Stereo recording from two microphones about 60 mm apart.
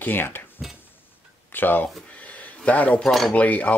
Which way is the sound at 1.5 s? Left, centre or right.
Left.